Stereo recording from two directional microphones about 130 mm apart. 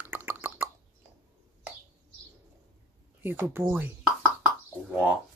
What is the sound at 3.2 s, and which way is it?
Speech, 15° right (ahead or behind).